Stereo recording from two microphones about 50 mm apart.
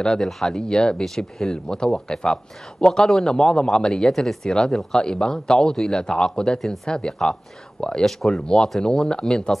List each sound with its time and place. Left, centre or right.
0.2 s a man's voice: centre
8.0 s speech: centre
8.4 s a man's voice: centre